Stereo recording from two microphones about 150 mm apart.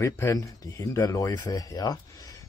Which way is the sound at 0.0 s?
20° left (ahead or behind).